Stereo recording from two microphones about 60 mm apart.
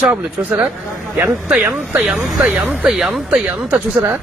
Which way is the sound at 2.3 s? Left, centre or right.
Centre.